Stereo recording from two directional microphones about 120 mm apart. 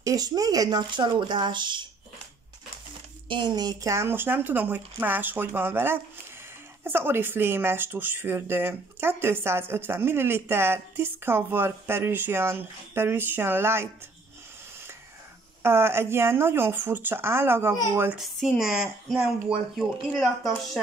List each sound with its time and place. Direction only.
0.0 s speech: 30° right (ahead or behind)
3.3 s speech: 40° right (ahead or behind); by 13.8 s 20° right (ahead or behind)
15.6 s speech: 20° right (ahead or behind)
18.1 s speech: centre (ahead or behind)